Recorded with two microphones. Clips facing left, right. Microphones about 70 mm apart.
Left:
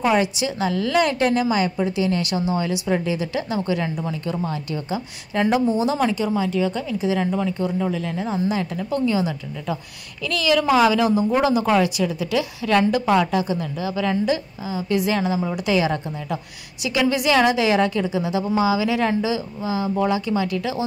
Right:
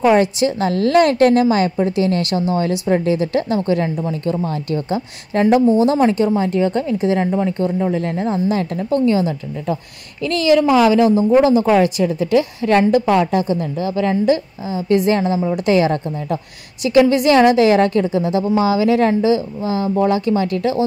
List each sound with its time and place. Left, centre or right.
0.0 s a woman's voice: right
7.2 s speech: right
8.0 s a woman's voice: right